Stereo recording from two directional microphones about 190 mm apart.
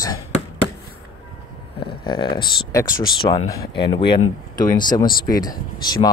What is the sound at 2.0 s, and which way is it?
Speech, 25° left (ahead or behind).